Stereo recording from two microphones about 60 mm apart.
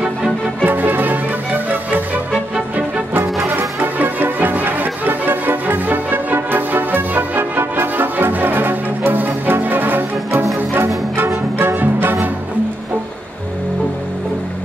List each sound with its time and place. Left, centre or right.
0.7 s music: right
3.4 s music: right